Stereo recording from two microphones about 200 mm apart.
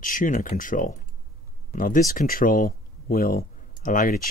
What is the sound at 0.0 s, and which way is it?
Speech, 40° left (ahead or behind).